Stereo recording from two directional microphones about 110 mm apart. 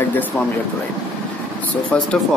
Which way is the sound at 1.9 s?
10° left (ahead or behind).